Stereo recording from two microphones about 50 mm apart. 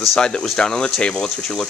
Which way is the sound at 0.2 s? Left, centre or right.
Centre.